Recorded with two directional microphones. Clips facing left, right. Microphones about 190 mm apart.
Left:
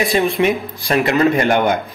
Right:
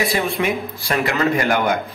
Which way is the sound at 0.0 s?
15° left (ahead or behind).